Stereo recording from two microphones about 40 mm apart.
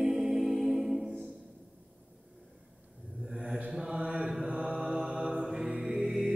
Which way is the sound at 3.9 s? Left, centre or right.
Right.